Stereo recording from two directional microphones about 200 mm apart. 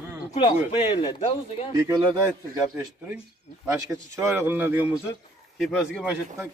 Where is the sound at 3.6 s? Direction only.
15° right (ahead or behind).